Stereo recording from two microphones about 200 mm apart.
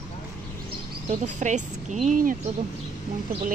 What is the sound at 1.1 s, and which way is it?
Speech, 35° right (ahead or behind).